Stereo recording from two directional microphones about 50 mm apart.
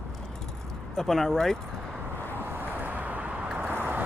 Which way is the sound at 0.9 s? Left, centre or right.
Centre.